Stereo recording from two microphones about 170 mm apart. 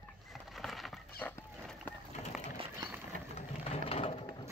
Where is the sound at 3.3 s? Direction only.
35° left (ahead or behind).